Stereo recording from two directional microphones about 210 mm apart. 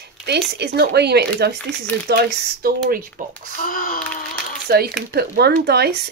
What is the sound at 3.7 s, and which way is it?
Speech, 40° left (ahead or behind).